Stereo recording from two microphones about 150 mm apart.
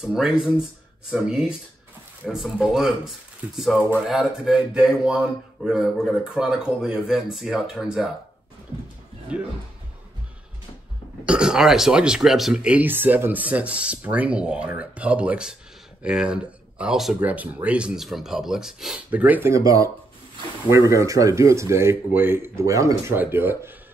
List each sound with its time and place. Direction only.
0.0 s speech: 5° right (ahead or behind)
11.2 s speech: 5° right (ahead or behind)